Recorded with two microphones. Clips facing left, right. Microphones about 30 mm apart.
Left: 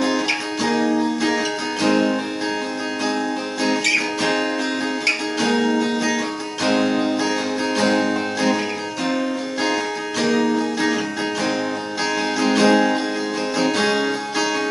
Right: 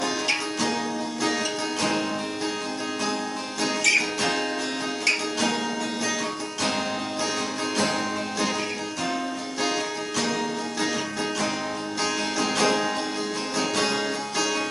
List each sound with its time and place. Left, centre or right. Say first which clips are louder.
0.0 s music: left 5 dB; left
3.6 s music: left 2 dB; left
10.2 s music: left 12 dB; centre
12.4 s music: left 8 dB; centre